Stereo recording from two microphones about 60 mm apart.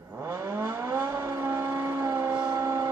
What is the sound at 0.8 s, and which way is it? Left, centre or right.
Vehicle, right.